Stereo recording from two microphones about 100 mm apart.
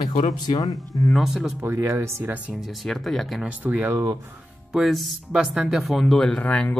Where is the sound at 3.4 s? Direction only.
15° right (ahead or behind).